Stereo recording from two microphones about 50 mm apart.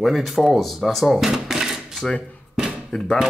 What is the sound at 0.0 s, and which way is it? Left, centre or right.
Speech, centre.